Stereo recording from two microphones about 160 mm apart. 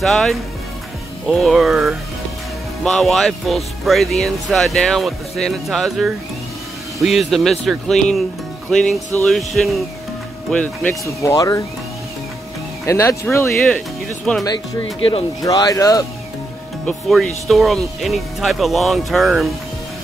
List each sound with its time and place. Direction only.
0.0 s speech: centre (ahead or behind)
11.2 s speech: 20° left (ahead or behind)
12.8 s speech: 20° left (ahead or behind)
15.4 s speech: 20° left (ahead or behind)
16.8 s speech: centre (ahead or behind)